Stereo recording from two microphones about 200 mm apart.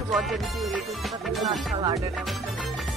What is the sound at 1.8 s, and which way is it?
Music, 15° right (ahead or behind).